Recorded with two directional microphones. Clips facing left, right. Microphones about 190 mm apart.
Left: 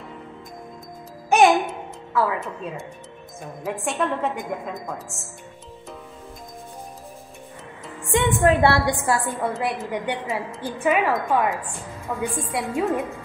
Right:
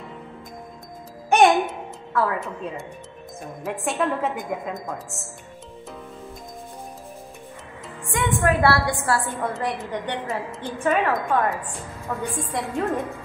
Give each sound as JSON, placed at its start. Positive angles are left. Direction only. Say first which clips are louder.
{"t": 1.3, "sound": "music", "louder": "even", "side_deg": 0}
{"t": 3.6, "sound": "a woman's voice", "louder": "even", "side_deg": 0}
{"t": 8.1, "sound": "a woman's voice", "louder": "left 3 dB", "side_deg": 25}
{"t": 9.5, "sound": "a woman's voice", "louder": "left 1 dB", "side_deg": 5}